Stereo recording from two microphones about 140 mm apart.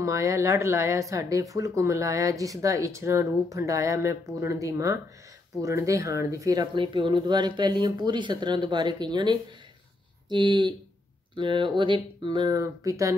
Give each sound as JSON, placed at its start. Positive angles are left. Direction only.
{"t": 0.0, "sound": "speech", "side_deg": -25}